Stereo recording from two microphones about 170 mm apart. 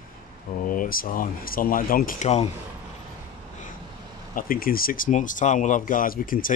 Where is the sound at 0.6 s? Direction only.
55° left (ahead or behind).